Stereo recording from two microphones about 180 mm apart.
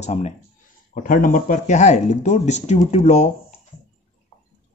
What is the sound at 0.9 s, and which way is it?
Speech, 50° left (ahead or behind).